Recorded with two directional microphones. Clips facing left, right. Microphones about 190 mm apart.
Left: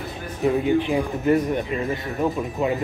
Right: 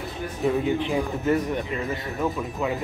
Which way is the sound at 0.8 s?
15° left (ahead or behind).